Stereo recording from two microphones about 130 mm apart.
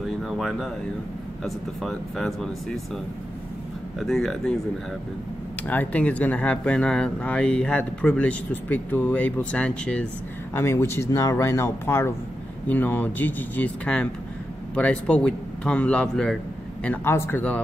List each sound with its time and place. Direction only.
0.0 s a sound: centre (ahead or behind)
1.4 s speech: 5° left (ahead or behind)
4.0 s speech: centre (ahead or behind)
5.7 s speech: 10° left (ahead or behind)
10.5 s speech: 20° left (ahead or behind)